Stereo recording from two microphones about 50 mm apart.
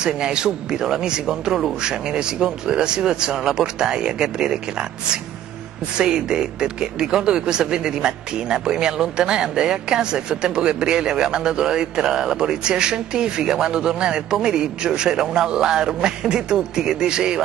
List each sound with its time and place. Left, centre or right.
0.0 s speech: centre